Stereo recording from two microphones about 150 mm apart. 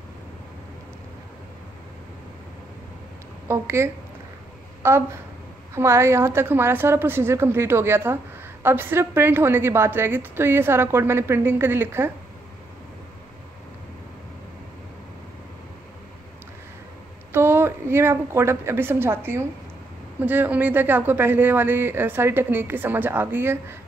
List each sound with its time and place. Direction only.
3.4 s a woman's voice: 20° right (ahead or behind)
17.3 s a woman's voice: 15° right (ahead or behind)